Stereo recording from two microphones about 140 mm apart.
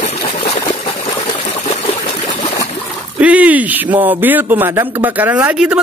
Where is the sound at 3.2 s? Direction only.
10° right (ahead or behind).